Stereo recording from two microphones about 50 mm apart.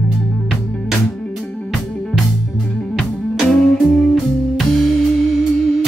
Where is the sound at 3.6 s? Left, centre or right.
Centre.